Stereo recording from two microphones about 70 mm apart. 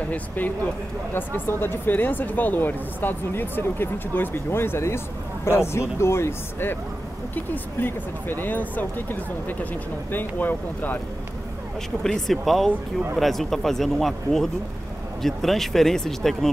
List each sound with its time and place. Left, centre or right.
1.1 s speech: left
12.0 s speech: centre